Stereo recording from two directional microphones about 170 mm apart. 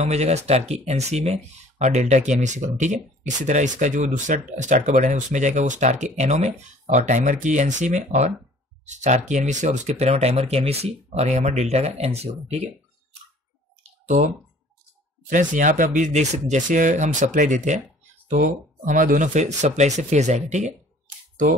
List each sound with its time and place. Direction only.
0.0 s speech: 40° right (ahead or behind)
15.2 s speech: 50° right (ahead or behind)